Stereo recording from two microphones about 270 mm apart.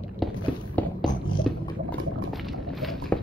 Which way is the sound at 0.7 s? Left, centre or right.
Centre.